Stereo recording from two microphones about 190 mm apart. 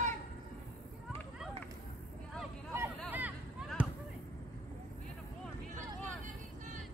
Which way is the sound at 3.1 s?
10° right (ahead or behind).